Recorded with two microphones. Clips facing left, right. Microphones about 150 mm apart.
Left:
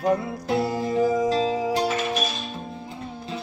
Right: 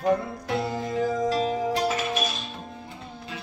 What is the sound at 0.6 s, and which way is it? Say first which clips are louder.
Music: left 4 dB; 35° left (ahead or behind).